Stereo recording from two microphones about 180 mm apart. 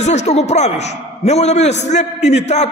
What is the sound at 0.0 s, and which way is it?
A man's voice, 40° left (ahead or behind).